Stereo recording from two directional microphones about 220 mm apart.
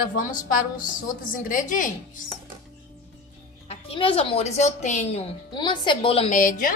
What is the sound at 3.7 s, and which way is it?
A woman's voice, 25° left (ahead or behind).